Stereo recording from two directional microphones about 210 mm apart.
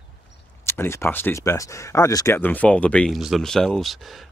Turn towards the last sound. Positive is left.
turn(degrees=0)  # may be behind; listen again after turning